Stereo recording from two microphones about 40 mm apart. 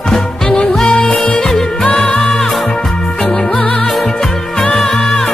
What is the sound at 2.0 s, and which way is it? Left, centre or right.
Music, left.